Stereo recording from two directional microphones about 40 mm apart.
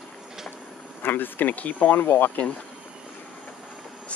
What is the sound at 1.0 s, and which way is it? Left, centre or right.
Speech, left.